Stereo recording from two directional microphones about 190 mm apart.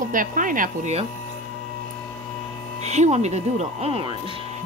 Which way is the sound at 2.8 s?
35° right (ahead or behind).